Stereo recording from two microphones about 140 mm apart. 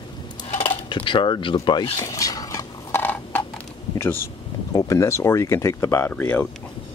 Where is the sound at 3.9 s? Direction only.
15° left (ahead or behind).